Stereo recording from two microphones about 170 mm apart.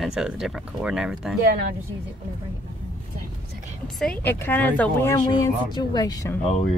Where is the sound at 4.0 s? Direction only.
10° left (ahead or behind).